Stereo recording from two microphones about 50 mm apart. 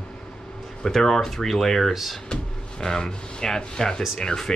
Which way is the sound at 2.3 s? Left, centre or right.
Centre.